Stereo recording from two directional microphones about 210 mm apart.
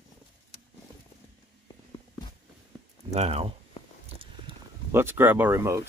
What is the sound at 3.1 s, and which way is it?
Speech, 30° right (ahead or behind).